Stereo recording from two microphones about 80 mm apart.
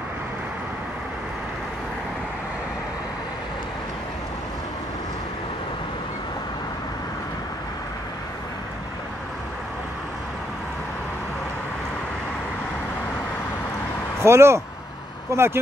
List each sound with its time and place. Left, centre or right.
14.2 s speech: right